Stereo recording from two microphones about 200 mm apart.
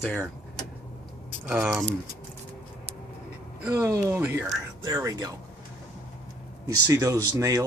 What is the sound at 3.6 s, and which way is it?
Speech, 15° right (ahead or behind).